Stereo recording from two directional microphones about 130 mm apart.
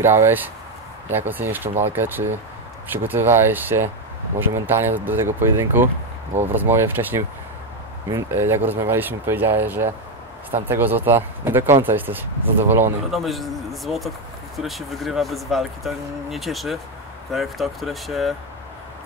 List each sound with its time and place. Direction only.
0.0 s speech: 20° right (ahead or behind)
13.1 s speech: centre (ahead or behind)